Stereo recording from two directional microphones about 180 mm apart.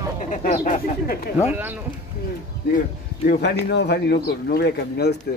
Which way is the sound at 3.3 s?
65° left (ahead or behind).